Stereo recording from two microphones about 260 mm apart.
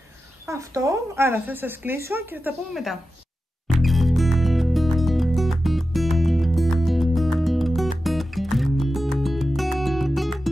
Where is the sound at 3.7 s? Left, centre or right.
Centre.